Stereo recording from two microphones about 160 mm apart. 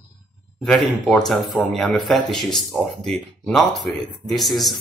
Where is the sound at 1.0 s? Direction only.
5° left (ahead or behind).